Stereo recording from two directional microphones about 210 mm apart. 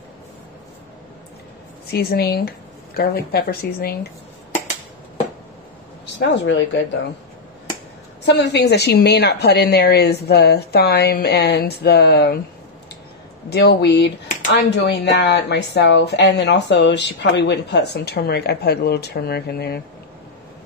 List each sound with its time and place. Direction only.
1.9 s speech: 50° left (ahead or behind)
6.1 s speech: 55° left (ahead or behind)
8.3 s speech: 55° left (ahead or behind)
13.5 s speech: 50° left (ahead or behind)